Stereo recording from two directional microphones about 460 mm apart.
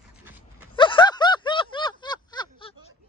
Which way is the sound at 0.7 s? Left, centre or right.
Centre.